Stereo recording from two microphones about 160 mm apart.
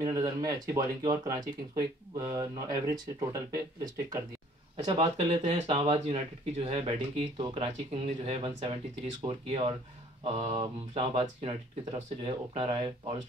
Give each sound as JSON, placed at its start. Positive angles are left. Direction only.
{"t": 0.0, "sound": "speech", "side_deg": -20}
{"t": 4.7, "sound": "speech", "side_deg": -40}